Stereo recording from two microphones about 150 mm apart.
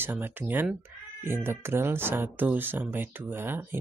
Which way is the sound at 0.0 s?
15° right (ahead or behind).